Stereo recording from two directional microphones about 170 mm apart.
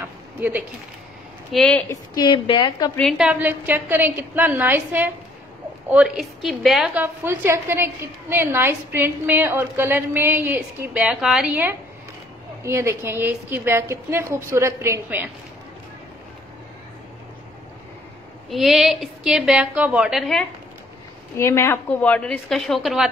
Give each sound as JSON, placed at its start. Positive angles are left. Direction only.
{"t": 0.0, "sound": "a sound", "side_deg": -10}
{"t": 1.5, "sound": "a woman's voice", "side_deg": 5}
{"t": 1.9, "sound": "a woman's voice", "side_deg": 25}
{"t": 3.0, "sound": "a woman's voice", "side_deg": 0}
{"t": 18.5, "sound": "a woman's voice", "side_deg": 0}
{"t": 21.4, "sound": "a woman's voice", "side_deg": 15}